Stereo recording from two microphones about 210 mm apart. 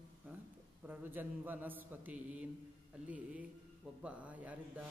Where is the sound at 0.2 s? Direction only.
5° right (ahead or behind).